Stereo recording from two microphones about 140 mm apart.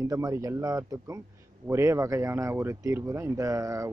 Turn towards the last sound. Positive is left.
turn(degrees=-25)  # may be behind; listen again after turning